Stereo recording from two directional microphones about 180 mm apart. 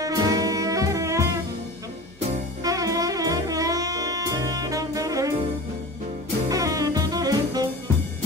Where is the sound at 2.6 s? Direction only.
20° right (ahead or behind).